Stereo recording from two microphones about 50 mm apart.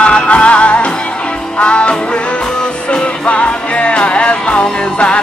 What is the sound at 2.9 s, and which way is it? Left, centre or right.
Music, left.